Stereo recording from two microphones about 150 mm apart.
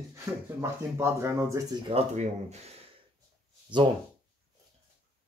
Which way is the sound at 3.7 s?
30° right (ahead or behind).